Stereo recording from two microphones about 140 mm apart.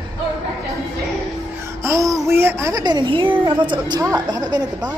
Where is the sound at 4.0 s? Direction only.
25° right (ahead or behind).